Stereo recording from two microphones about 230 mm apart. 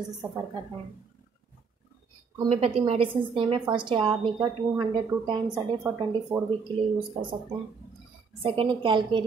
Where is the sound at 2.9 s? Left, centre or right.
Right.